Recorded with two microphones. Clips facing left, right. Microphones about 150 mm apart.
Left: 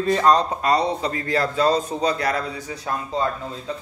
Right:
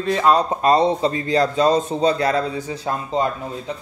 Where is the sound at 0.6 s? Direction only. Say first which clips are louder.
Right 5 dB; 25° right (ahead or behind).